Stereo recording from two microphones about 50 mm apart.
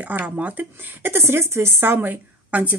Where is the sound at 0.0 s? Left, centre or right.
Right.